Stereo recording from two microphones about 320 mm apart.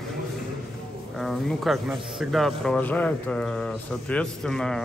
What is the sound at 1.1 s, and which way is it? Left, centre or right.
Speech, centre.